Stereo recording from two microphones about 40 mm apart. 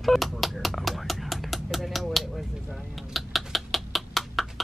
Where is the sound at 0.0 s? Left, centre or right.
Centre.